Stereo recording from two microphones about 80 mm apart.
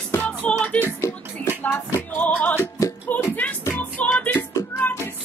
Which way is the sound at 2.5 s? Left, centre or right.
Left.